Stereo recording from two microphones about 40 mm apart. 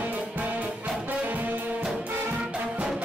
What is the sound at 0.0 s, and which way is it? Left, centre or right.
Music, right.